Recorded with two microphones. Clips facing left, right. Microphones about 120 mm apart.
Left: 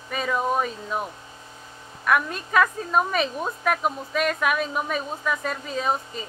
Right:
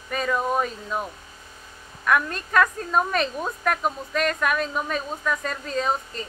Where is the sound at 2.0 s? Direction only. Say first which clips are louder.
Even; 5° left (ahead or behind).